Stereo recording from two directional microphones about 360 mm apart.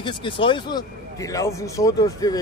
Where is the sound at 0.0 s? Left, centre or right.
Centre.